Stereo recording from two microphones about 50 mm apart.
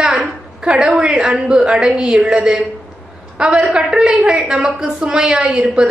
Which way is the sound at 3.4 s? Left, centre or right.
Centre.